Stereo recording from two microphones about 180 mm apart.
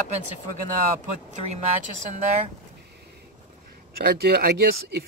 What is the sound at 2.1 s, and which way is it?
Speech, 40° right (ahead or behind).